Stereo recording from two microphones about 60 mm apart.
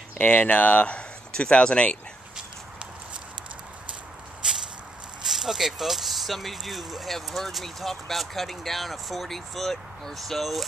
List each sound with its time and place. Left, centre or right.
0.2 s speech: left
4.4 s a sound: centre
5.2 s speech: centre